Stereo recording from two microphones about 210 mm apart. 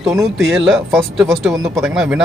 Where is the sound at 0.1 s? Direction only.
Centre (ahead or behind).